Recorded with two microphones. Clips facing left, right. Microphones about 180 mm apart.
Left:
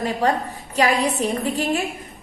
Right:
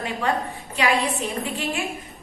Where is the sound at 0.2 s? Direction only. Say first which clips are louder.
Left 2 dB; 40° left (ahead or behind).